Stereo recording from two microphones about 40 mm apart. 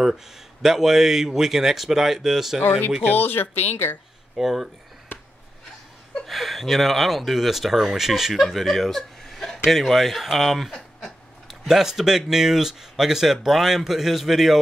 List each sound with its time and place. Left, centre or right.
0.0 s speech: centre
3.2 s speech: left
4.4 s speech: centre
6.2 s speech: centre
8.4 s speech: centre